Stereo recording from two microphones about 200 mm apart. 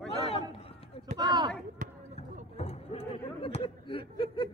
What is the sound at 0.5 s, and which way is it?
Run, 30° left (ahead or behind).